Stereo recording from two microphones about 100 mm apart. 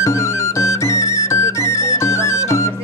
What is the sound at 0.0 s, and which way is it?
Music, 30° left (ahead or behind).